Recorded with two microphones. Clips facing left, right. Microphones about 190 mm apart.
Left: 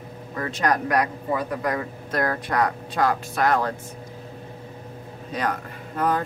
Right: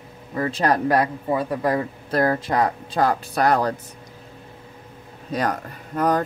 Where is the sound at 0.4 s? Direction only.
30° right (ahead or behind).